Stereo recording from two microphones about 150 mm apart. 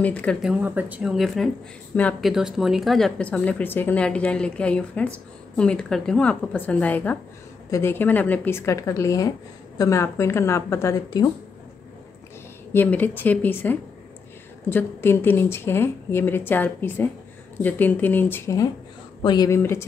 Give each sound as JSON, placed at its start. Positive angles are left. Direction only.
{"t": 0.0, "sound": "speech", "side_deg": 10}
{"t": 0.4, "sound": "speech", "side_deg": -10}
{"t": 12.7, "sound": "speech", "side_deg": 10}